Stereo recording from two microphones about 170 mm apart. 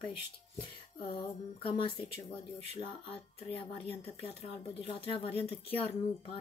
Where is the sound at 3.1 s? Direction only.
35° left (ahead or behind).